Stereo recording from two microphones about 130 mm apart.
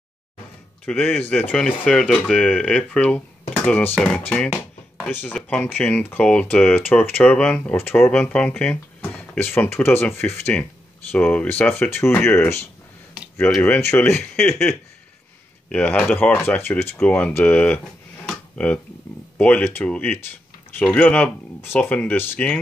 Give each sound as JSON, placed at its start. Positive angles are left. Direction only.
{"t": 0.8, "sound": "speech", "side_deg": 10}
{"t": 5.1, "sound": "speech", "side_deg": 10}
{"t": 14.1, "sound": "speech", "side_deg": 5}
{"t": 15.7, "sound": "speech", "side_deg": 10}
{"t": 18.2, "sound": "a sound", "side_deg": 10}
{"t": 19.3, "sound": "speech", "side_deg": 10}